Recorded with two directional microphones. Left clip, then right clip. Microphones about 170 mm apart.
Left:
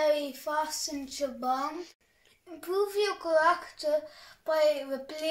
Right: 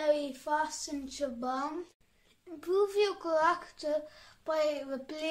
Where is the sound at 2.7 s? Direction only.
35° right (ahead or behind).